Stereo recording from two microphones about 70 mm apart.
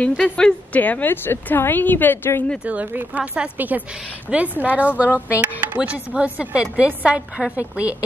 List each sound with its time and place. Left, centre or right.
0.2 s a woman's voice: centre
0.7 s a woman's voice: left
2.6 s speech: right
5.4 s music: right
5.8 s speech: centre